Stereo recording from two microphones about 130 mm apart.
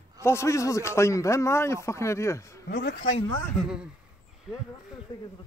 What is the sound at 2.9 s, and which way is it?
Speech, 75° left (ahead or behind).